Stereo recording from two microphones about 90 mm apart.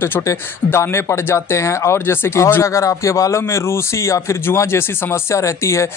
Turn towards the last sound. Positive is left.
turn(degrees=30)  # may be behind; listen again after turning